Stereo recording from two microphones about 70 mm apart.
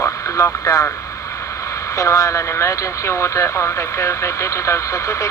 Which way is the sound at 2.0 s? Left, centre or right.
Left.